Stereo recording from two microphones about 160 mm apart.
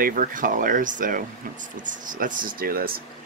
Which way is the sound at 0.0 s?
60° right (ahead or behind).